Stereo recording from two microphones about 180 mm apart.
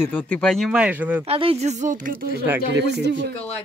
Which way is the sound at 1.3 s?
30° right (ahead or behind).